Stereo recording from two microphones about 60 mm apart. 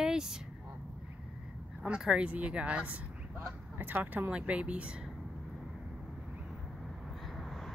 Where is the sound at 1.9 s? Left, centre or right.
Centre.